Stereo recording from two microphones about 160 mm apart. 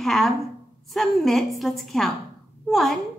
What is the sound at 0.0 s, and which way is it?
A woman's voice, centre (ahead or behind).